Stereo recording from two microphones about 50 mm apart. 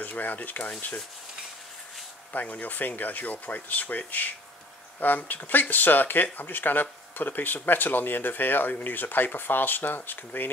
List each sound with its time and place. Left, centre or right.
0.0 s speech: left
2.3 s speech: left